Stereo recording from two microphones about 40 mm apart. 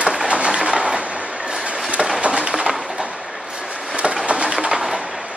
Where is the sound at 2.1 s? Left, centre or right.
Right.